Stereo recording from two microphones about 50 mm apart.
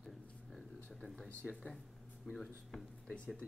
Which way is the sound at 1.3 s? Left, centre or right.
Left.